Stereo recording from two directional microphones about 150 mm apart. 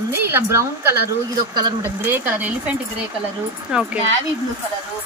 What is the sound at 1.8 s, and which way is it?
Speech, 15° right (ahead or behind).